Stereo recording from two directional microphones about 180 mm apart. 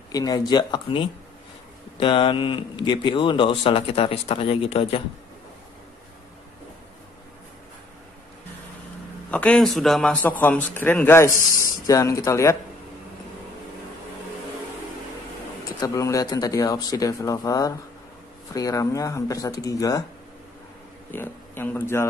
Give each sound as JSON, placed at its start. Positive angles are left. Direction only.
{"t": 0.1, "sound": "speech", "side_deg": 20}
{"t": 9.3, "sound": "a man's voice", "side_deg": 10}
{"t": 15.8, "sound": "speech", "side_deg": 15}
{"t": 21.1, "sound": "speech", "side_deg": 10}